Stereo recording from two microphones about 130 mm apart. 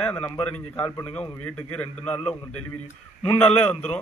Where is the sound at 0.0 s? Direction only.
15° left (ahead or behind).